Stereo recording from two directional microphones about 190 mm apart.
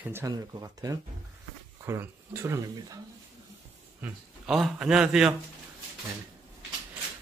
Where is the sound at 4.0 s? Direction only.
5° right (ahead or behind).